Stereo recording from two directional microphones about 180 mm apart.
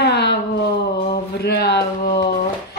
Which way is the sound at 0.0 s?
70° left (ahead or behind).